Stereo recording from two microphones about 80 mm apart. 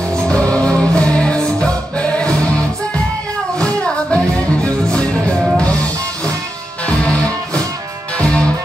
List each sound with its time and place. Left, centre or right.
0.1 s music: centre
3.5 s music: centre